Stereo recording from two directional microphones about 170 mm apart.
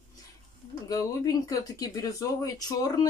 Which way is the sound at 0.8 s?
20° left (ahead or behind).